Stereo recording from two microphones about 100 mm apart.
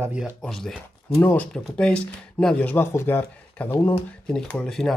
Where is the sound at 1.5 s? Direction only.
10° left (ahead or behind).